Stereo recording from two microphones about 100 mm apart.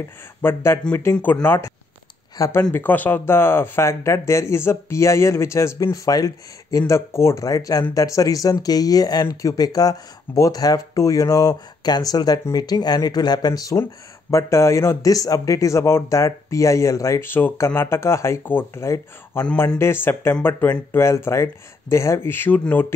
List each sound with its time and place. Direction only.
0.4 s speech: 25° left (ahead or behind)
2.4 s speech: 35° left (ahead or behind)
2.7 s speech: 20° left (ahead or behind); by 6.8 s 40° left (ahead or behind)
6.9 s speech: 25° left (ahead or behind)